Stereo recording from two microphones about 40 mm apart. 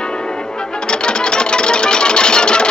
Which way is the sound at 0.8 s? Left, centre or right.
Left.